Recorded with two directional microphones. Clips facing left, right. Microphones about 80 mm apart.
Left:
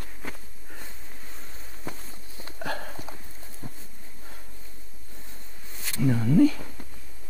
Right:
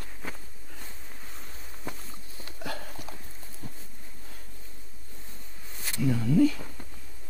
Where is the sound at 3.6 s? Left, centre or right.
Left.